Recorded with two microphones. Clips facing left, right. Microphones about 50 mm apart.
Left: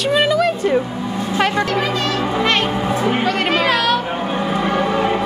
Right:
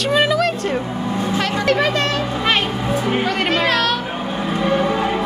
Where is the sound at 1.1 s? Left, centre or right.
Right.